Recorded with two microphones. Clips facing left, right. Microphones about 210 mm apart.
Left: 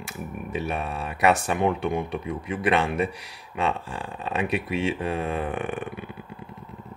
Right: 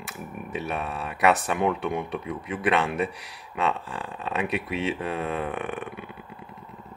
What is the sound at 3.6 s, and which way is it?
Speech, 30° left (ahead or behind).